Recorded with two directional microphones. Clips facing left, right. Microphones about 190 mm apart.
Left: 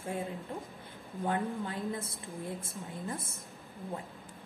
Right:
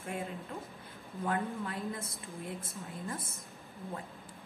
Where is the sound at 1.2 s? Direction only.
30° left (ahead or behind).